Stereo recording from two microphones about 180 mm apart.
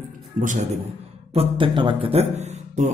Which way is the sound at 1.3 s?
30° right (ahead or behind).